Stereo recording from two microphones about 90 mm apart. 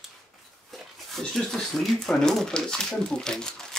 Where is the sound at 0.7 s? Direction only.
5° left (ahead or behind).